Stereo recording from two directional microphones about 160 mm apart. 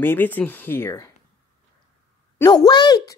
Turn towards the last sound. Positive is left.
turn(degrees=25)  # may be behind; listen again after turning